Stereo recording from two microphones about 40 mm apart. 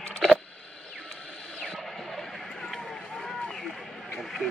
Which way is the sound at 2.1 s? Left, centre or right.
Centre.